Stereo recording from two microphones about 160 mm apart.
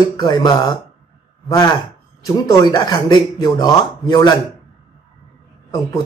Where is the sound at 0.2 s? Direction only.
25° left (ahead or behind).